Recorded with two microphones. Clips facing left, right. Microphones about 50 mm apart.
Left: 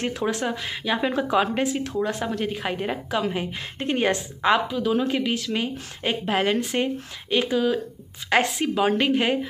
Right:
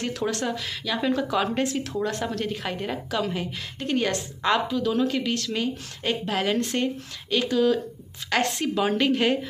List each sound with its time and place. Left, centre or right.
0.2 s a woman's voice: centre
6.8 s a woman's voice: centre